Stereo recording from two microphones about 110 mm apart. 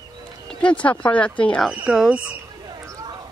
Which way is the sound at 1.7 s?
10° right (ahead or behind).